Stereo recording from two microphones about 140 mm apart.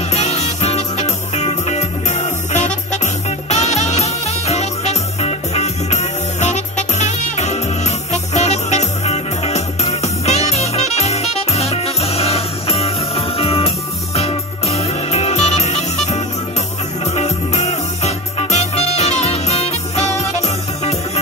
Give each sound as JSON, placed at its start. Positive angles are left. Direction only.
{"t": 0.1, "sound": "music", "side_deg": 50}